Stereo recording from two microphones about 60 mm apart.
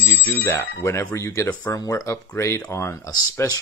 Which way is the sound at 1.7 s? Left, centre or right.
Left.